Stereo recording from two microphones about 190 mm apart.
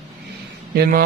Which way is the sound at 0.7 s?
50° right (ahead or behind).